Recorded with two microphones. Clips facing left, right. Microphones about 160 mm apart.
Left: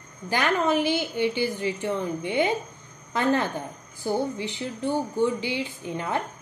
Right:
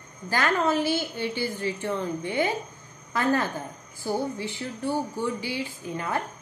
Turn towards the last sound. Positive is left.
turn(degrees=20)  # may be behind; listen again after turning